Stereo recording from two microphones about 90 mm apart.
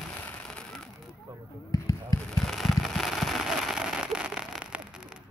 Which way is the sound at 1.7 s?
40° left (ahead or behind).